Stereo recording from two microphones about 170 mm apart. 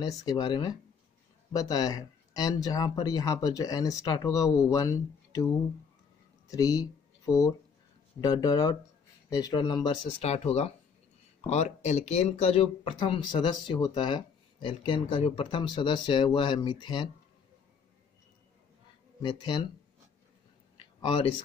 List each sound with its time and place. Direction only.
0.1 s speech: 25° left (ahead or behind)
10.2 s speech: 40° left (ahead or behind)
19.2 s speech: 25° left (ahead or behind)